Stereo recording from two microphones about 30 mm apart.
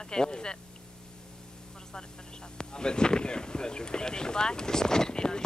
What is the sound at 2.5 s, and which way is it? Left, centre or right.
Wind noise, left.